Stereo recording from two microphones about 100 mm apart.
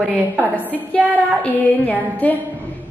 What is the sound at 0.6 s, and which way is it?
A woman's voice, 15° left (ahead or behind).